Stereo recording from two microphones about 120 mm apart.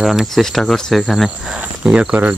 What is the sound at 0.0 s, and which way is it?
Speech, centre (ahead or behind).